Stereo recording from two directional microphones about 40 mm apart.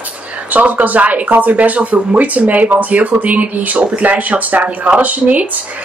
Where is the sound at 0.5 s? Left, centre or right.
Right.